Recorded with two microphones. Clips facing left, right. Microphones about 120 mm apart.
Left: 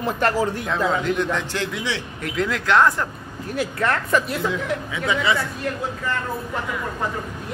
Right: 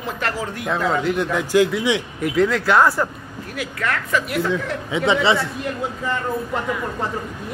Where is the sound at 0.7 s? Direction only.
5° right (ahead or behind).